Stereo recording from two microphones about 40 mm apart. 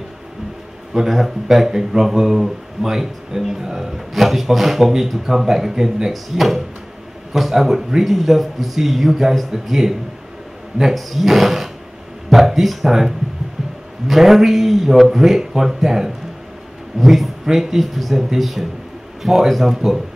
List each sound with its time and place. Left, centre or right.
0.9 s speech: centre